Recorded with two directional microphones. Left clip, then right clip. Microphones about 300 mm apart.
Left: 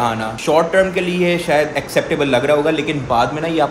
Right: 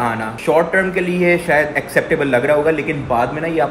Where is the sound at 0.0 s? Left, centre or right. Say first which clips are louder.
Even; centre.